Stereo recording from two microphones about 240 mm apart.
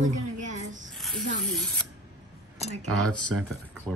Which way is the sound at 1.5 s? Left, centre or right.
Centre.